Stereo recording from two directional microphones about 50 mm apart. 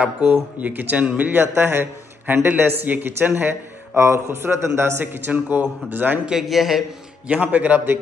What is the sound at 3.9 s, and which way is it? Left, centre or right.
A man's voice, right.